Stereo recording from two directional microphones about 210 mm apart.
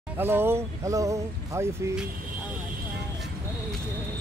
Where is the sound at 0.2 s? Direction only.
10° right (ahead or behind).